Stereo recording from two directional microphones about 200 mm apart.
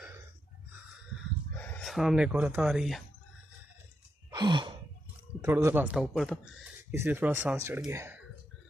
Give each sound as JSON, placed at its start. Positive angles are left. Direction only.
{"t": 1.6, "sound": "speech", "side_deg": 5}
{"t": 4.3, "sound": "sigh", "side_deg": -20}
{"t": 5.4, "sound": "speech", "side_deg": -15}